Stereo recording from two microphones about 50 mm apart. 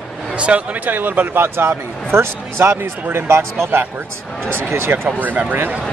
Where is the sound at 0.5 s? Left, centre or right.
Right.